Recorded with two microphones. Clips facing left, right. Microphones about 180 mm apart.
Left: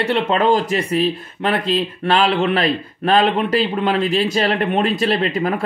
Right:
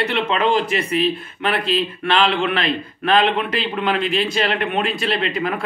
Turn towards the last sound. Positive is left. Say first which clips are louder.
# left 3 dB
turn(degrees=40)  # may be behind; listen again after turning